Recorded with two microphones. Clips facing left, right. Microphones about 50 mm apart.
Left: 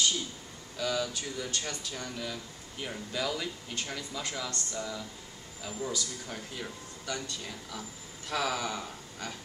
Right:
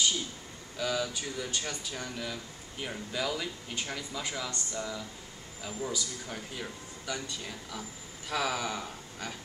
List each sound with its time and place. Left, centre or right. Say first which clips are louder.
0.7 s speech: even; centre